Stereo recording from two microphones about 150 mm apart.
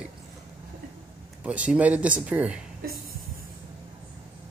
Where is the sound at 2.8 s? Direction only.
85° right.